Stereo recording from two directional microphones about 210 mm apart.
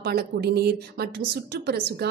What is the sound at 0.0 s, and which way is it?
Speech, 50° right (ahead or behind).